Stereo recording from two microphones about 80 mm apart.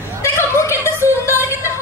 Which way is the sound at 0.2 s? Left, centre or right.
Left.